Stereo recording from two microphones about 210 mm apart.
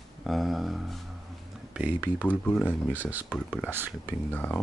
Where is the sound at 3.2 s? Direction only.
5° left (ahead or behind).